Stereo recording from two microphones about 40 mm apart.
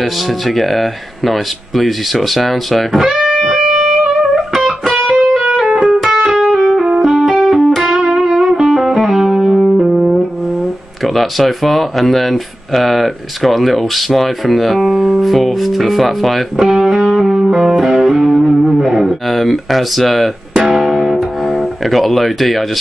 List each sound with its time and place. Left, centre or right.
0.0 s speech: centre
3.3 s music: centre
5.5 s music: centre
5.9 s music: centre
6.2 s music: centre
7.4 s music: centre
7.8 s music: centre
11.1 s speech: centre
16.5 s speech: centre
16.9 s music: centre